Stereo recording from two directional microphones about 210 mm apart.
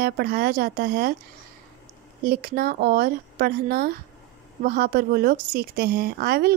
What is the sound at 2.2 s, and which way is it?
A woman's voice, 45° right (ahead or behind).